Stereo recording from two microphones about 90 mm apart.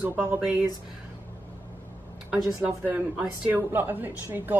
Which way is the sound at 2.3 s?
15° right (ahead or behind).